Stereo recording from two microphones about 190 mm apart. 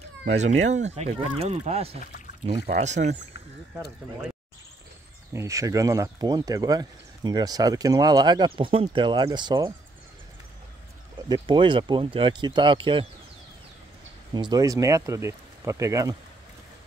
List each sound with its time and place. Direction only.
0.3 s speech: 35° right (ahead or behind)
5.3 s speech: 15° right (ahead or behind)
11.2 s speech: 25° right (ahead or behind)
14.3 s speech: 20° right (ahead or behind)